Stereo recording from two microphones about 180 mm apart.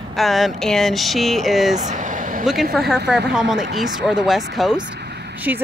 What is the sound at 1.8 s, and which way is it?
Vehicle, 45° right (ahead or behind).